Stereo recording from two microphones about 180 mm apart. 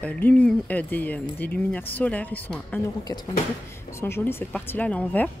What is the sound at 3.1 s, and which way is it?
Speech, 20° left (ahead or behind).